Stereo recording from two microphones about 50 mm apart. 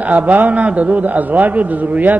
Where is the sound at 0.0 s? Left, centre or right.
Right.